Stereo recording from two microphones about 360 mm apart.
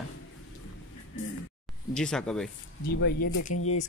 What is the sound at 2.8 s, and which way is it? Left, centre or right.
Speech, left.